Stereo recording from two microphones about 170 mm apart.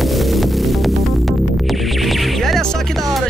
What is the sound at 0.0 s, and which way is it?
Music, centre (ahead or behind).